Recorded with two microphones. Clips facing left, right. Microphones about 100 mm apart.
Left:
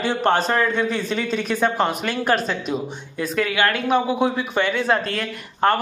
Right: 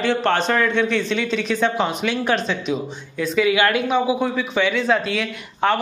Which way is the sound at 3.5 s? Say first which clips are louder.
Right 2 dB; 15° right (ahead or behind).